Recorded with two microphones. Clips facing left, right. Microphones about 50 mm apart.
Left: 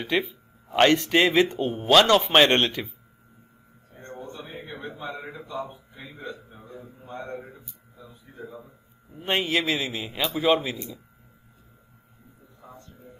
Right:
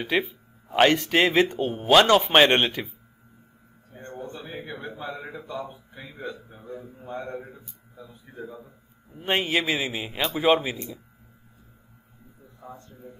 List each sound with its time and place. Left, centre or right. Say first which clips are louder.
0.0 s a man's voice: right 1 dB; centre
4.8 s a sound: left 2 dB; right
5.9 s speech: right 2 dB; right
9.2 s a man's voice: even; centre